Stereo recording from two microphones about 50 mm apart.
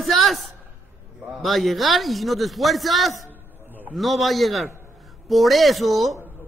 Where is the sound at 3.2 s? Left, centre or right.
Right.